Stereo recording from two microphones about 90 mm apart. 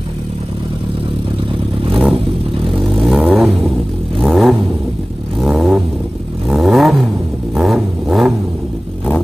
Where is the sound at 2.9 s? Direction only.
Centre (ahead or behind).